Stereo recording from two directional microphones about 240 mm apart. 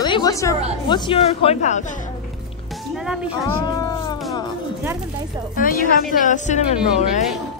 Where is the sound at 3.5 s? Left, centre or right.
Centre.